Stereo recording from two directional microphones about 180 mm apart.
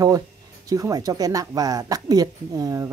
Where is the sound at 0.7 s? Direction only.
20° right (ahead or behind).